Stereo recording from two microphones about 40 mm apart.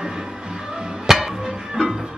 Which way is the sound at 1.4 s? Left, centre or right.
Centre.